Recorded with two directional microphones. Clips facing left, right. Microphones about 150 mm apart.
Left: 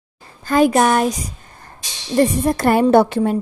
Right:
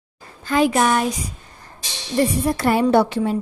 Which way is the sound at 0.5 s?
45° left (ahead or behind).